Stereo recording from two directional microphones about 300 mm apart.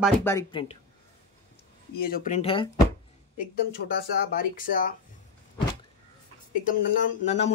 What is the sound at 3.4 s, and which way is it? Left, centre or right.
Speech, left.